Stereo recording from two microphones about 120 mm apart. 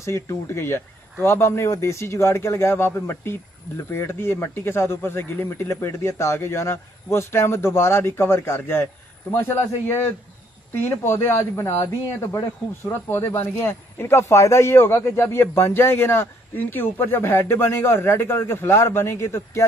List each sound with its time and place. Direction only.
0.0 s speech: 25° left (ahead or behind)
12.8 s speech: 20° left (ahead or behind)